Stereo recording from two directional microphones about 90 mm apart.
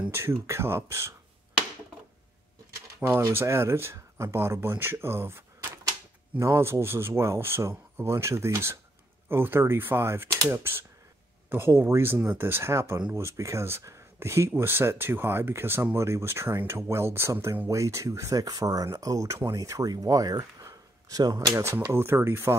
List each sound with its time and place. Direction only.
0.1 s speech: 30° right (ahead or behind)
2.7 s speech: 35° right (ahead or behind); by 21.5 s 50° right (ahead or behind)
21.9 s speech: 25° right (ahead or behind)